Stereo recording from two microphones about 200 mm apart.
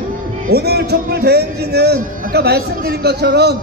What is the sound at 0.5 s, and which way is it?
A man's voice, 55° right (ahead or behind).